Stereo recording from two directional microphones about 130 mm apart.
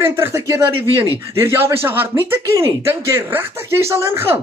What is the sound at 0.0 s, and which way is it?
Speech, 20° right (ahead or behind).